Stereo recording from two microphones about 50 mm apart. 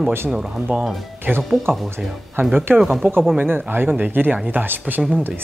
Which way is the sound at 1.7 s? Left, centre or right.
Right.